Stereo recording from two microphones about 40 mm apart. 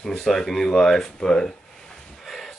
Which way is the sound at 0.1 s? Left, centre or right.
Centre.